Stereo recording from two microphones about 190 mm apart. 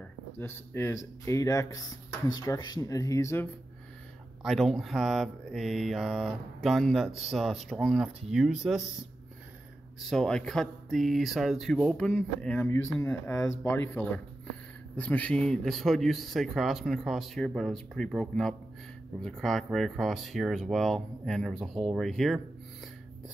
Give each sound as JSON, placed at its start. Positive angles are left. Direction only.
{"t": 0.4, "sound": "speech", "side_deg": 10}
{"t": 4.4, "sound": "speech", "side_deg": 0}
{"t": 10.0, "sound": "speech", "side_deg": 5}